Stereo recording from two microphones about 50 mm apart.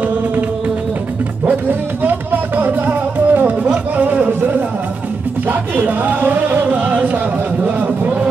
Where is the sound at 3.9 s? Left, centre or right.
Right.